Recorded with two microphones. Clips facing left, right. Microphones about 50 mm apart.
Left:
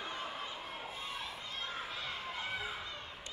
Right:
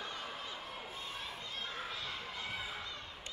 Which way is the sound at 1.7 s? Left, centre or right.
Centre.